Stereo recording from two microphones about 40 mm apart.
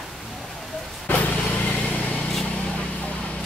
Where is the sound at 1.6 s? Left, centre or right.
Left.